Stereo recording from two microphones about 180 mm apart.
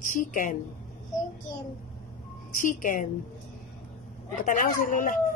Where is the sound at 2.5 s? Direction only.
45° left (ahead or behind).